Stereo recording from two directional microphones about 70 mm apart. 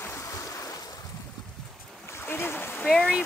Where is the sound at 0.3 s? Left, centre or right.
Left.